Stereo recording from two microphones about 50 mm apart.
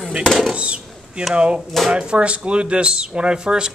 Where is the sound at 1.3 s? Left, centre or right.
Right.